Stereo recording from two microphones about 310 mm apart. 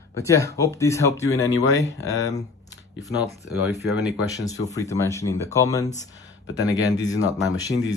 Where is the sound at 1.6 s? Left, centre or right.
Left.